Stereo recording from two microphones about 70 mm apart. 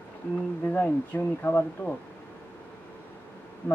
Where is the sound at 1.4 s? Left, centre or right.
Left.